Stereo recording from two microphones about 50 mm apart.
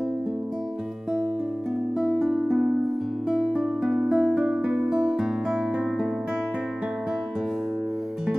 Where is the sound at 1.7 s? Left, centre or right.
Centre.